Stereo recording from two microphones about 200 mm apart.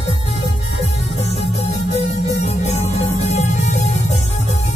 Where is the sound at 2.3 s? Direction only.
35° left (ahead or behind).